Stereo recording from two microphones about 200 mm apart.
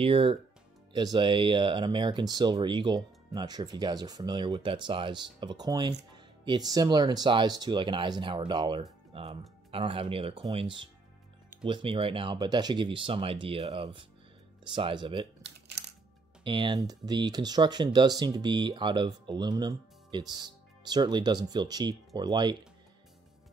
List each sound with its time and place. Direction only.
0.0 s speech: 30° right (ahead or behind)
16.4 s speech: 25° right (ahead or behind)